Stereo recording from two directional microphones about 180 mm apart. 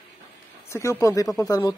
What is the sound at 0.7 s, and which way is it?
Speech, 15° left (ahead or behind).